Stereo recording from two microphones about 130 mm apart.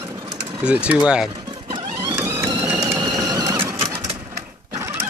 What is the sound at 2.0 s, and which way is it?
Printer, 20° right (ahead or behind).